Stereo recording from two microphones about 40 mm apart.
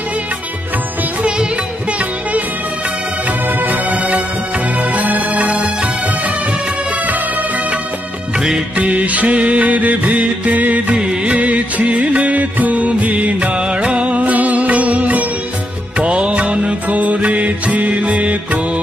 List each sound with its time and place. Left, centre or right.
3.4 s music: right
8.4 s music: centre
8.7 s music: right
13.6 s music: right
16.1 s music: right